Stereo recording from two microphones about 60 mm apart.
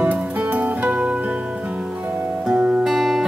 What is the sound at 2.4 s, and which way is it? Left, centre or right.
Music, centre.